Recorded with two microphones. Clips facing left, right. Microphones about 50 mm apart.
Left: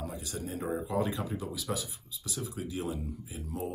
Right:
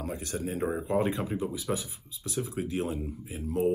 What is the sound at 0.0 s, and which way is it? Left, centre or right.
Speech, right.